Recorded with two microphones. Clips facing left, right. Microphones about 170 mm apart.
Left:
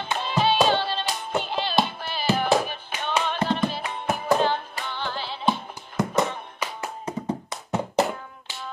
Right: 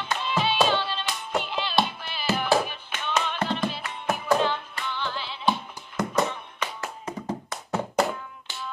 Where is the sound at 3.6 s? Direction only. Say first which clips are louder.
Left 2 dB; 30° left (ahead or behind).